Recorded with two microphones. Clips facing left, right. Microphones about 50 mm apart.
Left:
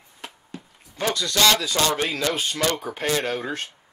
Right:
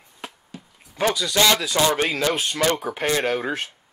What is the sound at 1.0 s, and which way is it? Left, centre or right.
Speech, centre.